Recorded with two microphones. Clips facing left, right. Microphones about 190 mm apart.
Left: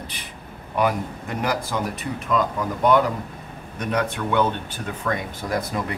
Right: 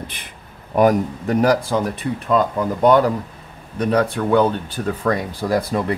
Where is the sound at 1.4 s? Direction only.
30° right (ahead or behind).